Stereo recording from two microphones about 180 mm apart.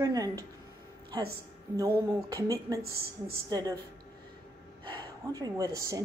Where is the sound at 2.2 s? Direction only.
20° right (ahead or behind).